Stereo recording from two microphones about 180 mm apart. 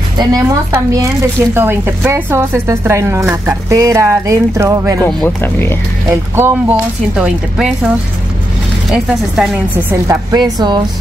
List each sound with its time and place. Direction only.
0.2 s speech: 20° right (ahead or behind)
5.0 s speech: 10° left (ahead or behind)
6.0 s speech: 15° right (ahead or behind)
8.9 s speech: 5° right (ahead or behind)
10.0 s speech: 25° right (ahead or behind)